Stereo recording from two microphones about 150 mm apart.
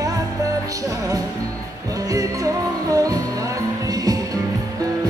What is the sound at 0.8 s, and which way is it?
Music, 20° right (ahead or behind).